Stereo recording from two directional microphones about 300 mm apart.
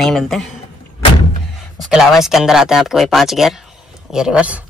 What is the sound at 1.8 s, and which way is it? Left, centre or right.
Speech, centre.